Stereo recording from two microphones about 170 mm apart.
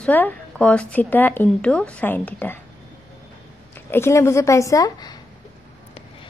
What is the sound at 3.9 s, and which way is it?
A woman's voice, 15° left (ahead or behind).